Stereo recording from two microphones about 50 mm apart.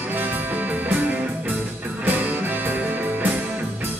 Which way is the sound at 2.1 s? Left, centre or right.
Right.